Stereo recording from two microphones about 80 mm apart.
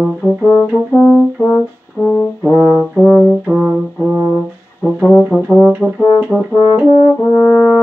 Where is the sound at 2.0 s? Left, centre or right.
Left.